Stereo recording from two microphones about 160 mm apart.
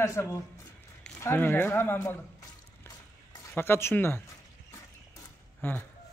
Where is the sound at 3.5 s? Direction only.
15° left (ahead or behind).